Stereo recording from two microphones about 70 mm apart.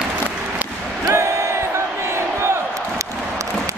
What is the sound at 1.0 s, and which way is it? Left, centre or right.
Crowd, right.